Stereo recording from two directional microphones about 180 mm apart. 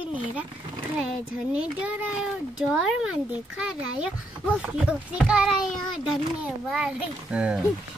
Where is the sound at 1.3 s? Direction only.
5° right (ahead or behind).